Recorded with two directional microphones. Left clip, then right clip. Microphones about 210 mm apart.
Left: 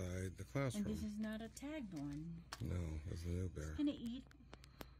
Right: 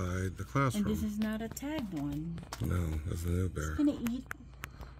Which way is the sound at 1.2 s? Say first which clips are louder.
Right 11 dB; 25° left (ahead or behind).